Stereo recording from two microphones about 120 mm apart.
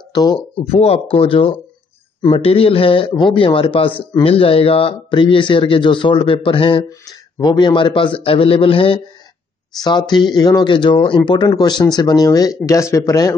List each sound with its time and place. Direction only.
0.1 s speech: 35° left (ahead or behind)
0.6 s speech: 60° left (ahead or behind); by 6.9 s 45° left (ahead or behind)
6.9 s speech: 30° left (ahead or behind); by 9.0 s 50° left (ahead or behind)
9.8 s speech: 35° left (ahead or behind)